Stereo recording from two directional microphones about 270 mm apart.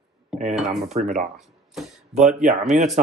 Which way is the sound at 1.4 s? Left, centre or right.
Centre.